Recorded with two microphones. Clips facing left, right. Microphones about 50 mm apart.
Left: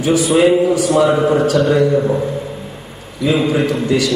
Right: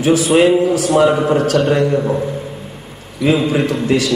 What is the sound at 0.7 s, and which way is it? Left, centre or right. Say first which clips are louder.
A man's voice: even; right.